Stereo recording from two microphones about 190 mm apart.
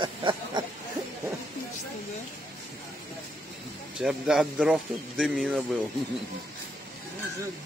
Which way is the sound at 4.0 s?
5° right (ahead or behind).